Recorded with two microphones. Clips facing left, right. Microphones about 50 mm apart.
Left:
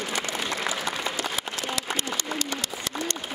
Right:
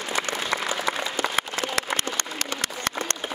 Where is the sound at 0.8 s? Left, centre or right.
Right.